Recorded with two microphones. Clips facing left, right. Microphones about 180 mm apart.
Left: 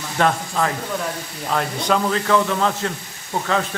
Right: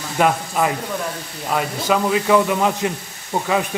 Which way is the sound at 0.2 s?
15° right (ahead or behind).